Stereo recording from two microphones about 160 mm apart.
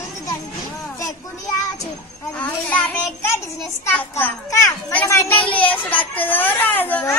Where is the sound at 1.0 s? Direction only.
20° left (ahead or behind).